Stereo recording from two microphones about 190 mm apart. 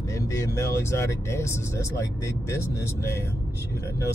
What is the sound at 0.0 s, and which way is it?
Speech, 15° left (ahead or behind).